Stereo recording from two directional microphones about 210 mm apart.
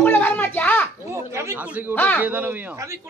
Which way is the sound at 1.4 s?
10° right (ahead or behind).